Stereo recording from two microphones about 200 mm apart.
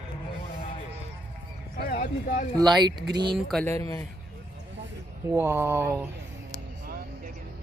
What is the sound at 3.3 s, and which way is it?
Speech, centre (ahead or behind).